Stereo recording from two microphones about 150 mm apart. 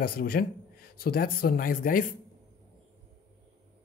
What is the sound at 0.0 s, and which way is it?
Speech, 85° left.